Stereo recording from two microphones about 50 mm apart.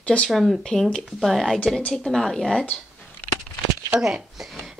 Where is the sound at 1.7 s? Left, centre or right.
Centre.